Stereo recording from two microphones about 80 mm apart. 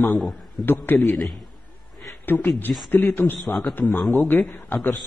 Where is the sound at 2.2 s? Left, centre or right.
Left.